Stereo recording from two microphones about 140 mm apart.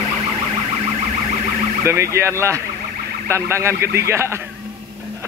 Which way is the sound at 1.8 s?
20° right (ahead or behind).